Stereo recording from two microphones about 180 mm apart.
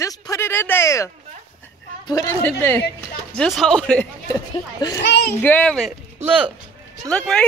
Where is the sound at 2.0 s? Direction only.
20° left (ahead or behind).